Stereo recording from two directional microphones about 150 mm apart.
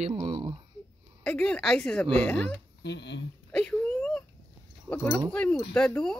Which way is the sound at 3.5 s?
5° left (ahead or behind).